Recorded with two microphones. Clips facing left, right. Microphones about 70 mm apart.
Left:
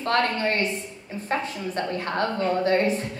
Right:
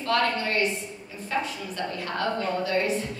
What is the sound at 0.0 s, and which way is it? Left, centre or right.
Speech, left.